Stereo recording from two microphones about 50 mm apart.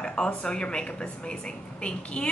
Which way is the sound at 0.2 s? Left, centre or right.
Centre.